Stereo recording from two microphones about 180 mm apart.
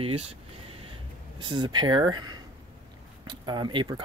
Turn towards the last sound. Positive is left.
turn(degrees=-25)  # may be behind; listen again after turning